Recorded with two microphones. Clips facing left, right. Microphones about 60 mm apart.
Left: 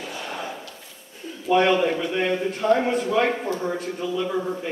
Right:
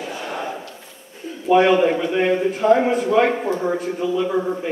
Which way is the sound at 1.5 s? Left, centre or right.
Centre.